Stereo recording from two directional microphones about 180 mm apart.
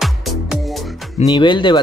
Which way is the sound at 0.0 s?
Centre (ahead or behind).